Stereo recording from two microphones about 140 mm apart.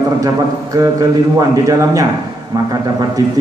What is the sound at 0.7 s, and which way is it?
A man's voice, 25° right (ahead or behind).